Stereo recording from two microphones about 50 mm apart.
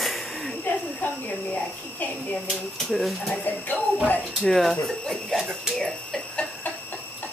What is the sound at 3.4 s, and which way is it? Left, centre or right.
Speech, left.